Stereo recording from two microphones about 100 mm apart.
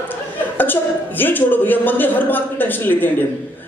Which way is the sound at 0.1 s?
20° left (ahead or behind).